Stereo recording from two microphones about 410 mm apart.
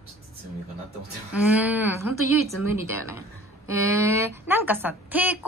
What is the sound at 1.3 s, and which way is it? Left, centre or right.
A woman's voice, centre.